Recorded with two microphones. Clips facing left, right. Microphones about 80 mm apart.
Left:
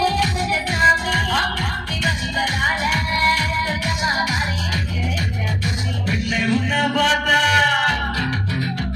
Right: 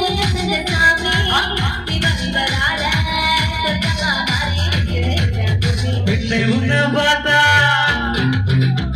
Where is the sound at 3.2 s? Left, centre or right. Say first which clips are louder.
Even; right.